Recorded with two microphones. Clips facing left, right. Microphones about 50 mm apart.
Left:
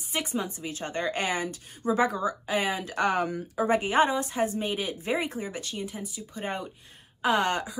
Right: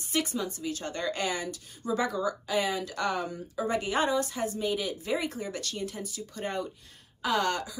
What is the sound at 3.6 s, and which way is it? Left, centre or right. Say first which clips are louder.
A woman's voice: left 4 dB; left.